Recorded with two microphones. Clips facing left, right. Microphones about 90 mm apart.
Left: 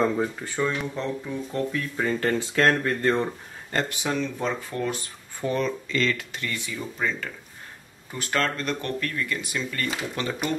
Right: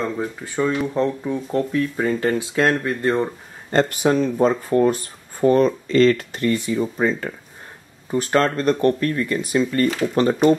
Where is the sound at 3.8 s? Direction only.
45° right (ahead or behind).